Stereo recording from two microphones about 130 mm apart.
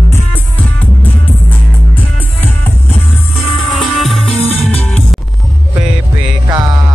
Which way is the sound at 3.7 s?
Centre (ahead or behind).